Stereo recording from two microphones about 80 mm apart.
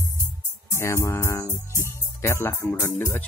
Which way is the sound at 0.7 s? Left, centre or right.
Left.